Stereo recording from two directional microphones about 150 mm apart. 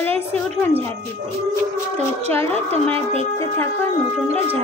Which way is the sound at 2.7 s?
40° right (ahead or behind).